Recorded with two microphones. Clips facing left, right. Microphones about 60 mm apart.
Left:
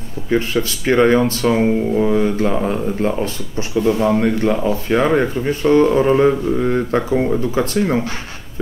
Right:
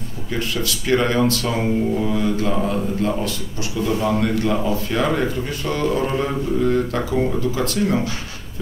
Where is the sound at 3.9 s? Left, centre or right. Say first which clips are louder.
Left 4 dB; left.